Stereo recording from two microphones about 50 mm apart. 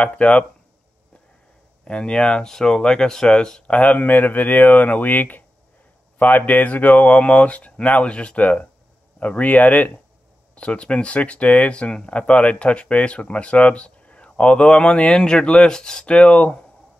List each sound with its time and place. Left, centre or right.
0.0 s speech: left
1.9 s speech: centre
3.6 s speech: left